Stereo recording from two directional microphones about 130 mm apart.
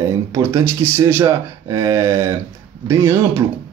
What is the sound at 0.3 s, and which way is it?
Speech, 20° right (ahead or behind).